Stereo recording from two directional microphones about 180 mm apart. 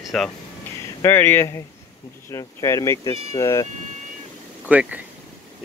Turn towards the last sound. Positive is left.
turn(degrees=-10)  # may be behind; listen again after turning